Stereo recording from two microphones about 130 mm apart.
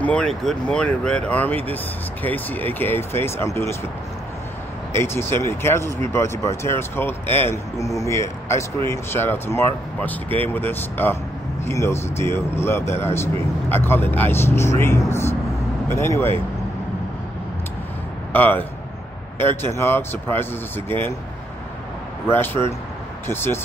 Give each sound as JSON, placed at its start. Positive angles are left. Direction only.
{"t": 0.0, "sound": "speech", "side_deg": 5}
{"t": 4.9, "sound": "speech", "side_deg": 20}
{"t": 18.3, "sound": "speech", "side_deg": 15}
{"t": 22.3, "sound": "speech", "side_deg": 15}